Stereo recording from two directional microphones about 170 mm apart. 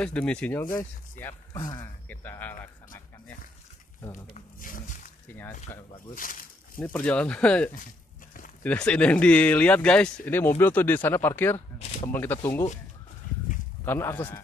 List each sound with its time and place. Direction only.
0.0 s speech: 10° left (ahead or behind)
1.7 s speech: 15° left (ahead or behind)
4.1 s speech: 50° left (ahead or behind)
6.1 s a sound: 55° left (ahead or behind)
6.8 s speech: 5° left (ahead or behind)
13.3 s a sound: 55° left (ahead or behind)
13.8 s speech: 15° left (ahead or behind)